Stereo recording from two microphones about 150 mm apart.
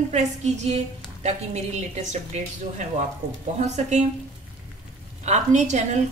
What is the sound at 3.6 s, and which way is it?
Speech, 50° right (ahead or behind).